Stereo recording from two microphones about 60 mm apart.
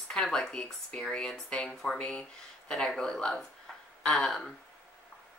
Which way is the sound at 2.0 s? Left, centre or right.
Left.